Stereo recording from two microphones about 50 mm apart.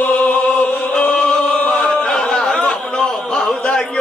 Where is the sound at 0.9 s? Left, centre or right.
Left.